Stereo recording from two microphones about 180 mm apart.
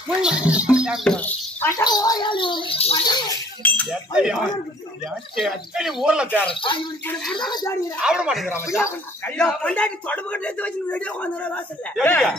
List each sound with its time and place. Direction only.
0.2 s speech: 5° right (ahead or behind)
1.9 s speech: 20° left (ahead or behind)
3.6 s chink: 10° left (ahead or behind)
4.1 s speech: 5° right (ahead or behind)
6.5 s speech: 30° left (ahead or behind)
8.0 s speech: 5° right (ahead or behind)
8.8 s speech: 10° left (ahead or behind)